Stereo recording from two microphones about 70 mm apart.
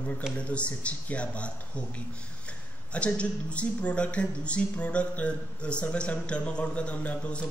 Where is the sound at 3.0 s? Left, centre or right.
Centre.